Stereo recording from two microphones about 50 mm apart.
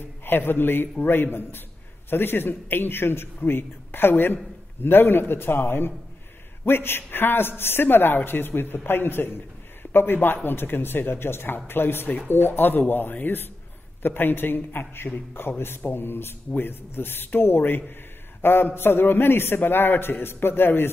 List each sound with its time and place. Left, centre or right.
0.2 s a man's voice: left